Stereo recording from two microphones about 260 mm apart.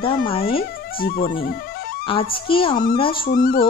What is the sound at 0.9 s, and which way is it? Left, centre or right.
Music, left.